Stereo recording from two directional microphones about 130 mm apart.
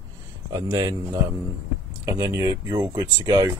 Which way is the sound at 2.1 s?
25° right (ahead or behind).